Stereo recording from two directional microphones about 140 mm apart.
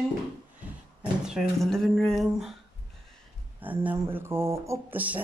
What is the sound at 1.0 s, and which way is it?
Speech, 5° right (ahead or behind).